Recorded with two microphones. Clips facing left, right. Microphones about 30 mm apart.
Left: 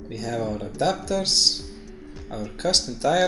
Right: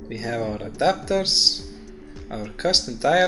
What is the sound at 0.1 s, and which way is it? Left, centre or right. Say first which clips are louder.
Speech: right 1 dB; centre.